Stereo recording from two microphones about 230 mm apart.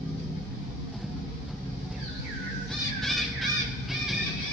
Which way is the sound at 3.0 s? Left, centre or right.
Centre.